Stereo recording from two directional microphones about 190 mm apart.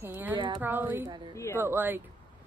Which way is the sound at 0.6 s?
10° right (ahead or behind).